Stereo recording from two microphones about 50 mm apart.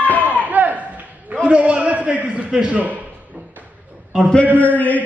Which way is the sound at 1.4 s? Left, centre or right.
Right.